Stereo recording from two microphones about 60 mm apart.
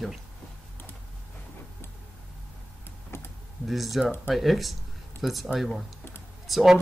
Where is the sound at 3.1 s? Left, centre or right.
Left.